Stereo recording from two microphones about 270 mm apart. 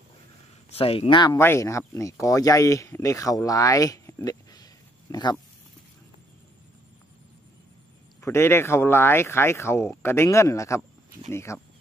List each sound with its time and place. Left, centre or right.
0.7 s speech: left
8.2 s speech: centre